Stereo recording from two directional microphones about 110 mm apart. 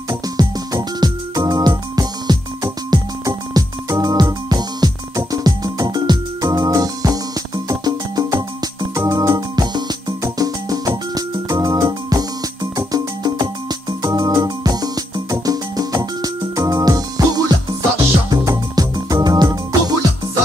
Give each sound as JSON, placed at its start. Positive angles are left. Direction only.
{"t": 0.1, "sound": "music", "side_deg": -40}